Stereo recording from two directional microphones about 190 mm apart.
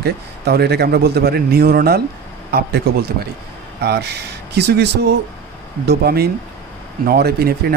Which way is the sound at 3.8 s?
60° right (ahead or behind).